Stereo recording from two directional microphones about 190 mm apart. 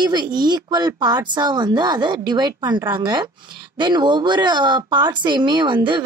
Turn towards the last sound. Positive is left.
turn(degrees=-25)  # may be behind; listen again after turning